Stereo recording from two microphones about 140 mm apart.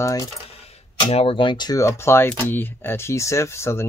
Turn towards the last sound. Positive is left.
turn(degrees=20)  # may be behind; listen again after turning